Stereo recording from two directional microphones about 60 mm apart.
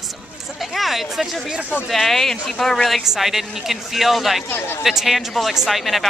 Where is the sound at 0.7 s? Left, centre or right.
Centre.